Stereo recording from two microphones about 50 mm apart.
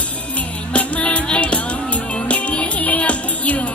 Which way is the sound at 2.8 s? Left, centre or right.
Left.